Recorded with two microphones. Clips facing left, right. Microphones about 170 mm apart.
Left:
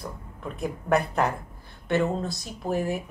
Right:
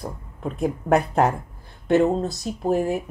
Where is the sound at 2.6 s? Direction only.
40° right (ahead or behind).